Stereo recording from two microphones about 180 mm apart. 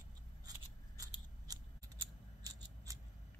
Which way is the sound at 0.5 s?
20° right (ahead or behind).